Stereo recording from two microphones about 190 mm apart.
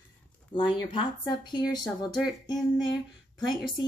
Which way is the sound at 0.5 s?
25° left (ahead or behind).